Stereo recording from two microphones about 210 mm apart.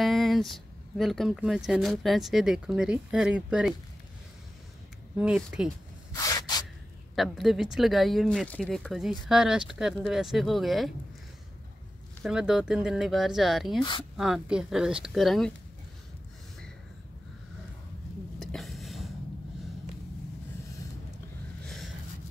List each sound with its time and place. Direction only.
0.0 s speech: centre (ahead or behind)
5.1 s speech: 5° right (ahead or behind)
6.1 s rub: 20° left (ahead or behind)
7.2 s speech: centre (ahead or behind)
12.2 s speech: 5° right (ahead or behind)
13.7 s speech: 25° left (ahead or behind)
14.1 s speech: centre (ahead or behind)
18.4 s a sound: centre (ahead or behind)
21.6 s a sound: centre (ahead or behind)